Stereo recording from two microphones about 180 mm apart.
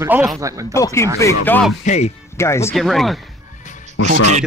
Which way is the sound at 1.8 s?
40° left (ahead or behind).